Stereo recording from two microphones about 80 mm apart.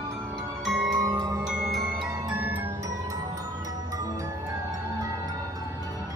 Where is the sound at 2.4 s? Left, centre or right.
Right.